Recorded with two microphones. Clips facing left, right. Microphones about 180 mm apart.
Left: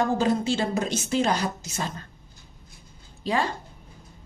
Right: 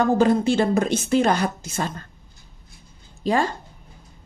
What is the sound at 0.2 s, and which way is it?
A woman's voice, 55° right (ahead or behind).